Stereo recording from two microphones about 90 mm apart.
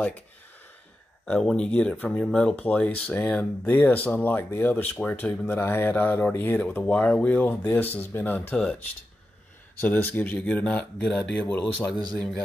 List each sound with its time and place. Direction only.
1.5 s speech: 10° left (ahead or behind)
9.8 s speech: 20° left (ahead or behind)